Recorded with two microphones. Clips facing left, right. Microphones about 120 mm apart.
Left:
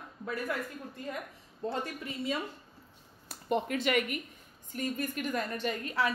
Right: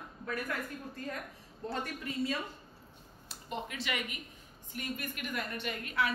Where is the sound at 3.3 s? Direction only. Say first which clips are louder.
Left 9 dB; 50° left (ahead or behind).